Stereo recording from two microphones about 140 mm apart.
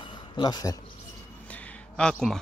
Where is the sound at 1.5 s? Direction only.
5° left (ahead or behind).